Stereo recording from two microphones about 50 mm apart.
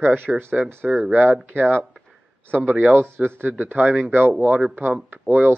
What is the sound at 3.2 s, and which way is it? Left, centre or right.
Speech, right.